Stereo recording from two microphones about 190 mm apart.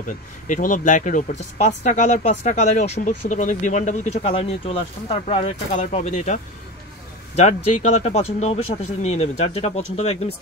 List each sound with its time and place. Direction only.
0.5 s speech: 40° left (ahead or behind)